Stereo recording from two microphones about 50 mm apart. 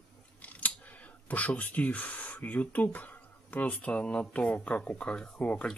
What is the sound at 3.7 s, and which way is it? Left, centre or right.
Speech, left.